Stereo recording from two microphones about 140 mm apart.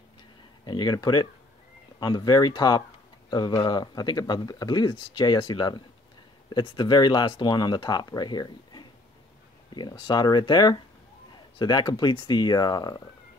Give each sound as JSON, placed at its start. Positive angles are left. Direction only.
{"t": 0.7, "sound": "speech", "side_deg": 30}